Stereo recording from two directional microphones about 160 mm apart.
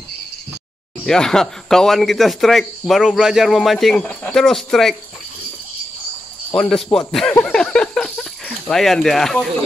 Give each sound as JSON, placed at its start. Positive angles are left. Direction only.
{"t": 1.0, "sound": "speech", "side_deg": 5}
{"t": 6.5, "sound": "speech", "side_deg": 5}
{"t": 7.4, "sound": "a sound", "side_deg": 5}